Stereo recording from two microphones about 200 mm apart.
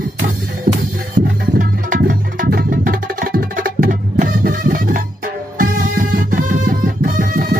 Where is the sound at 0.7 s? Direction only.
40° right (ahead or behind).